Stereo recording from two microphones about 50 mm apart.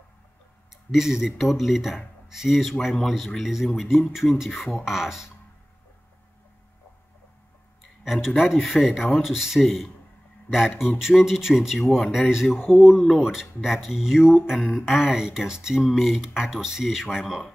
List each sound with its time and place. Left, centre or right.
0.9 s speech: centre
8.0 s speech: centre